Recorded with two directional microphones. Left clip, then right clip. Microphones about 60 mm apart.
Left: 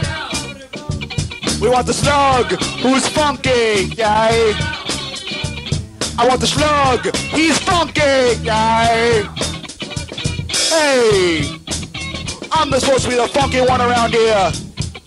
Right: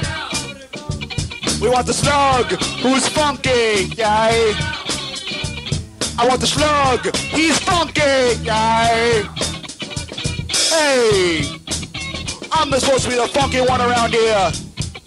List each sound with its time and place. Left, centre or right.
0.0 s music: left